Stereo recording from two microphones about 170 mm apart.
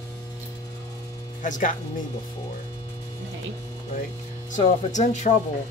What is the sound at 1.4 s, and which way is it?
Speech, 50° left (ahead or behind).